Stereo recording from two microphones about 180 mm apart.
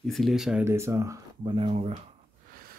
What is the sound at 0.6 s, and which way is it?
Speech, 15° right (ahead or behind).